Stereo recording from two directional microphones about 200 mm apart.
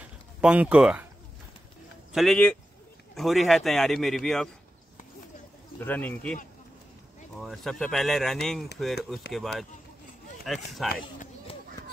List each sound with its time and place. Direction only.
0.4 s speech: 5° right (ahead or behind)
2.1 s speech: 5° left (ahead or behind)
5.8 s speech: 10° left (ahead or behind)
7.3 s speech: centre (ahead or behind)
10.9 s speech: 45° left (ahead or behind)